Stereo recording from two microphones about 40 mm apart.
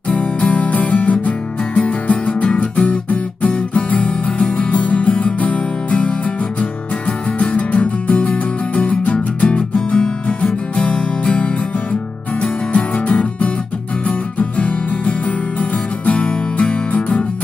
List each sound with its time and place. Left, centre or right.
0.1 s music: left
7.3 s music: left